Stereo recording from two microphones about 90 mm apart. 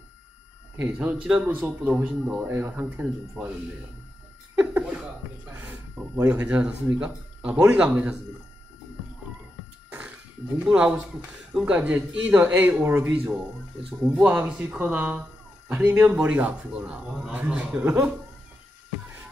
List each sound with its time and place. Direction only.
0.7 s speech: 15° right (ahead or behind)
4.6 s chuckle: 15° right (ahead or behind)
5.5 s speech: 20° right (ahead or behind)
9.8 s music: 10° right (ahead or behind)
10.6 s speech: 10° right (ahead or behind)